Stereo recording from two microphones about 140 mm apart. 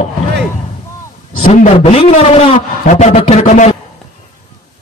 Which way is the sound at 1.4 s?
60° left (ahead or behind).